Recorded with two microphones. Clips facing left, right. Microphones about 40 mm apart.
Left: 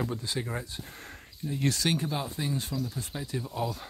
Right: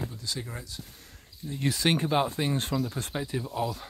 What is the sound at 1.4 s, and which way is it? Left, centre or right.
Speech, left.